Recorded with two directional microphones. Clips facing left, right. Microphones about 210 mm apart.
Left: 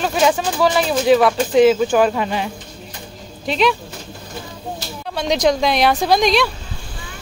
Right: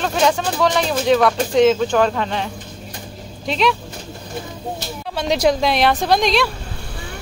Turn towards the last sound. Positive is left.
turn(degrees=0)  # may be behind; listen again after turning